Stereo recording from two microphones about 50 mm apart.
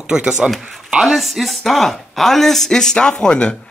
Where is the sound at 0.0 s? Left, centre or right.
Centre.